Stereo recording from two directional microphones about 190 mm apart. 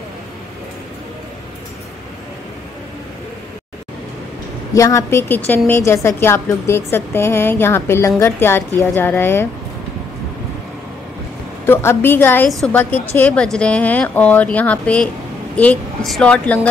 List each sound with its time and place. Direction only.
4.7 s a woman's voice: 15° left (ahead or behind)
11.6 s a woman's voice: 10° left (ahead or behind)
12.4 s a woman's voice: centre (ahead or behind)